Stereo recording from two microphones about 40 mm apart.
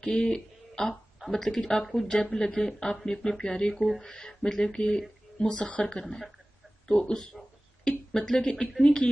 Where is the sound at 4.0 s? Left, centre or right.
Centre.